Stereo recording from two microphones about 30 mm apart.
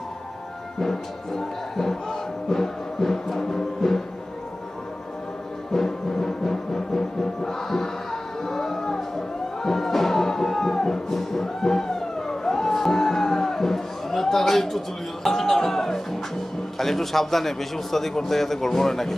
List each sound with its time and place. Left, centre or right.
0.7 s a man's voice: centre
2.0 s music: centre
5.7 s music: centre
15.2 s a man's voice: centre